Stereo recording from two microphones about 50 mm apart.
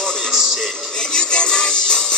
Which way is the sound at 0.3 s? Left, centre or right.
Centre.